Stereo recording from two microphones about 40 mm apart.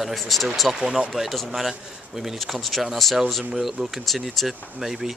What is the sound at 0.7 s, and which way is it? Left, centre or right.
Speech, centre.